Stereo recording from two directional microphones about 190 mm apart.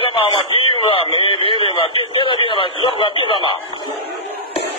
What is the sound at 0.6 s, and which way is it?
Radio, 30° left (ahead or behind).